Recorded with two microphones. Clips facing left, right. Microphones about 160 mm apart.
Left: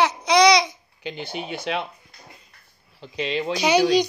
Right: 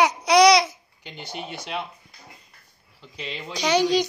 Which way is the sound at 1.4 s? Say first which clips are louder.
Left 5 dB; 70° left (ahead or behind).